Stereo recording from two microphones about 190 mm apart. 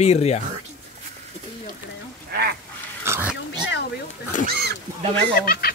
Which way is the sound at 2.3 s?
55° right (ahead or behind).